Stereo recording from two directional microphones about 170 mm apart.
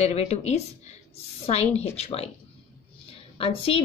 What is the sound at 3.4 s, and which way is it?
Speech, 35° left (ahead or behind).